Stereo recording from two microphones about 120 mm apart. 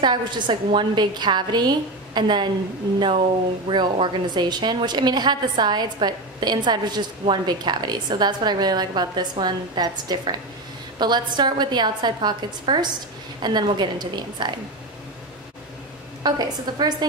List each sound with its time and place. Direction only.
0.0 s a woman's voice: 40° right (ahead or behind)
3.6 s a woman's voice: 40° right (ahead or behind)
16.2 s a woman's voice: 35° right (ahead or behind)